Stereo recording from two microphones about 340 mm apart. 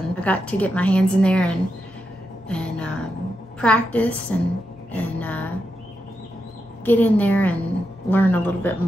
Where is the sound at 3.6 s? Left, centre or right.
Centre.